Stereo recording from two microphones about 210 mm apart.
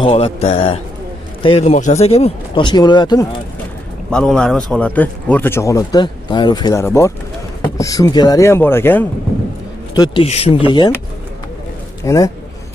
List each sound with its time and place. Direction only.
0.0 s speech: 30° left (ahead or behind)
4.1 s speech: 5° left (ahead or behind)
9.9 s speech: 20° left (ahead or behind)
12.0 s a man's voice: 15° left (ahead or behind)